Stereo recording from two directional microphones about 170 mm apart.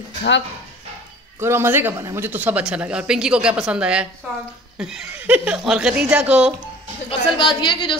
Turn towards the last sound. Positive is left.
turn(degrees=30)  # may be behind; listen again after turning